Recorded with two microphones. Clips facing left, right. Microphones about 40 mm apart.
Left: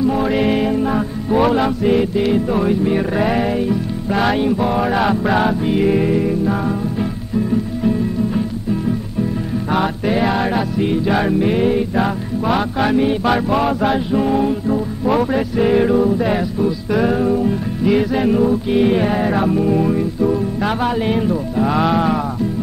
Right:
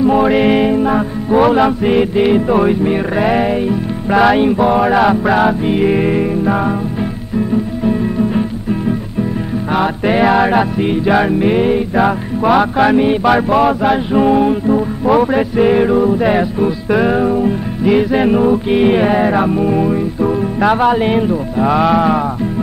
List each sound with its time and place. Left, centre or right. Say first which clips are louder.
0.0 s music: right 5 dB; right
4.1 s music: right 6 dB; right
7.8 s music: right 4 dB; right
10.0 s mantra: right 9 dB; right
10.8 s music: right 4 dB; right
12.5 s mantra: right 6 dB; right
13.7 s music: right 3 dB; centre
14.1 s music: right 5 dB; right
18.1 s music: right 4 dB; right
21.6 s music: right 5 dB; right